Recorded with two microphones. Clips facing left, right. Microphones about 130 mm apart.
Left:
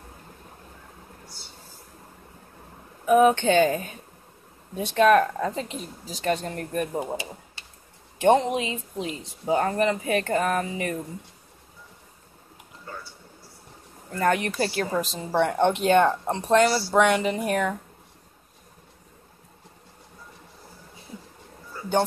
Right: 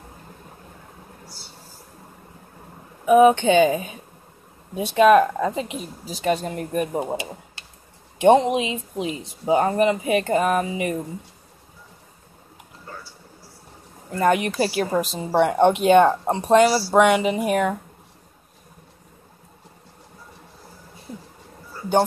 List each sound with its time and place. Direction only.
3.1 s speech: 10° right (ahead or behind)
14.1 s speech: 15° right (ahead or behind)